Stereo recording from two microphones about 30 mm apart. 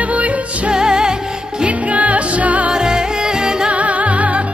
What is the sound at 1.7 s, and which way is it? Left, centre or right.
Music, right.